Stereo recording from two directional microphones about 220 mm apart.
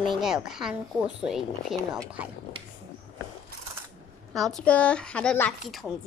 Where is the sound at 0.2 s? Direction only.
Centre (ahead or behind).